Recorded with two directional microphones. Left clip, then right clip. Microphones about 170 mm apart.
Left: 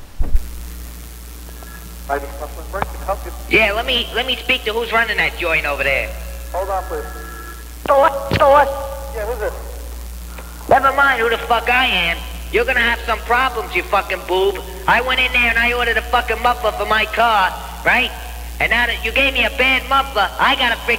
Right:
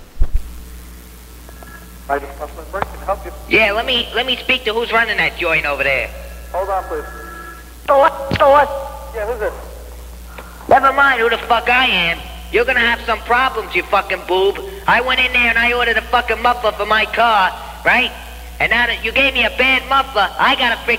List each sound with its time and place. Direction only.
2.0 s a man's voice: 30° right (ahead or behind)